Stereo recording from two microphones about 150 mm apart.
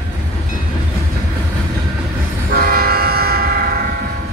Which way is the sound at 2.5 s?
85° right.